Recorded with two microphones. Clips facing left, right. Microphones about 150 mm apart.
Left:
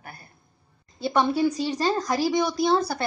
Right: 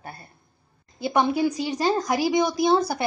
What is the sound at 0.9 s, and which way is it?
Speech, 15° right (ahead or behind).